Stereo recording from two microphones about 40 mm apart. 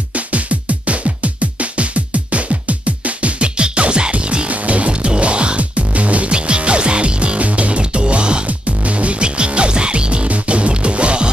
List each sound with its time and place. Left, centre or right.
0.1 s music: right
8.5 s music: right